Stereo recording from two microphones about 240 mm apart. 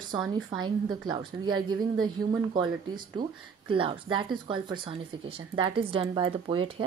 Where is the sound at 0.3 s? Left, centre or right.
Centre.